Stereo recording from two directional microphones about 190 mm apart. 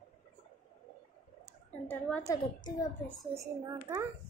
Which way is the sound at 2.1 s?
20° left (ahead or behind).